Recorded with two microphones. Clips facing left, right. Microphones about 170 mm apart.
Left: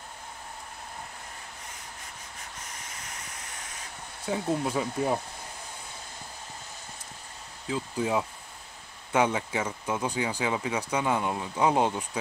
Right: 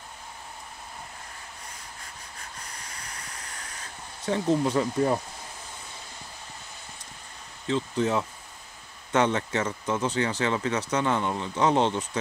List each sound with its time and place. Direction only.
4.3 s speech: 5° left (ahead or behind)
7.6 s speech: 5° left (ahead or behind)